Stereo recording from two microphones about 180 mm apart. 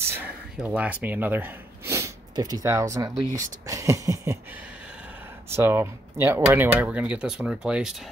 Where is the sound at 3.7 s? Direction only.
20° right (ahead or behind).